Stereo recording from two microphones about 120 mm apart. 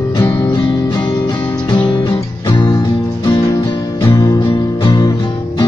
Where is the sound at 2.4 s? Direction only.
40° left (ahead or behind).